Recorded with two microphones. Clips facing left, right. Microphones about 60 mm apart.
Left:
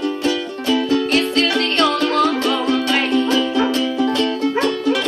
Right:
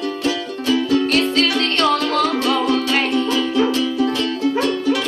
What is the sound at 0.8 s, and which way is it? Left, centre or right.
Music, left.